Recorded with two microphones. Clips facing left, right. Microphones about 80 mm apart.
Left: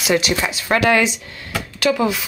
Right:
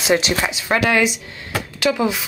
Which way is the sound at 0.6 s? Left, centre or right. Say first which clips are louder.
Left 2 dB; centre.